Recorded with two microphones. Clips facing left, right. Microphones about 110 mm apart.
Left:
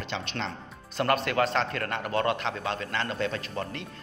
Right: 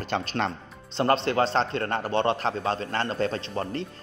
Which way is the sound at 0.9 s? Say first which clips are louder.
Right 3 dB; 30° right (ahead or behind).